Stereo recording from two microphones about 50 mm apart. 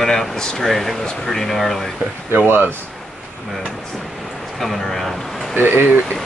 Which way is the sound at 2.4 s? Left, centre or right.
Right.